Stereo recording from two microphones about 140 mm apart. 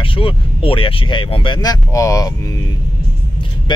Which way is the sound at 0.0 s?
40° left (ahead or behind).